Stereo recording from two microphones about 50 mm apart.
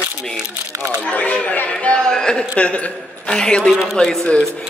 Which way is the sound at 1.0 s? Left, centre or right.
Left.